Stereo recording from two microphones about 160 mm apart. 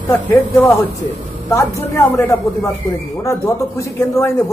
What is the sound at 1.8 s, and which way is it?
Speech, 15° left (ahead or behind).